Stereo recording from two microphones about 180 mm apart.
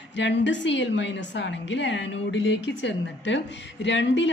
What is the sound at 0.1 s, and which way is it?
A woman's voice, 80° left.